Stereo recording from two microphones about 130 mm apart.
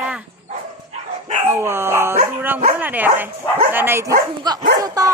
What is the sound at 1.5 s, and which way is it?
Speech, 20° right (ahead or behind).